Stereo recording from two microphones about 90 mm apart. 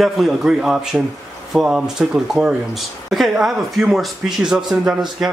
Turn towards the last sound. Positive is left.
turn(degrees=-10)  # may be behind; listen again after turning